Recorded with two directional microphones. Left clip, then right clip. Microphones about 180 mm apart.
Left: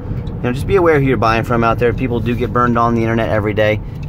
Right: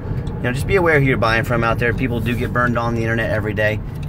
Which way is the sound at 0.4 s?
25° left (ahead or behind).